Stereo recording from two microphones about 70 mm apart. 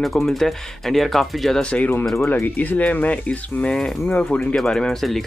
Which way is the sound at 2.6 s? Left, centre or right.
Left.